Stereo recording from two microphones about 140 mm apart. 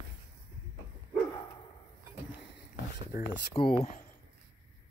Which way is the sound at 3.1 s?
90° left.